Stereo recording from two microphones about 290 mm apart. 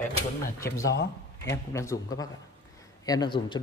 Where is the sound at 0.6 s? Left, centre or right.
Left.